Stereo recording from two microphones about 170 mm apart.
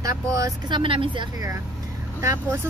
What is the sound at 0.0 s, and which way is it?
Speech, 20° right (ahead or behind).